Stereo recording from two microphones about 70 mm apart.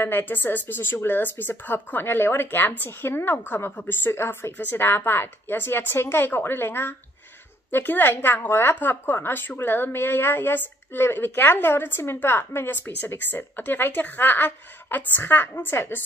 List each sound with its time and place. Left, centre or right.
0.0 s a woman's voice: left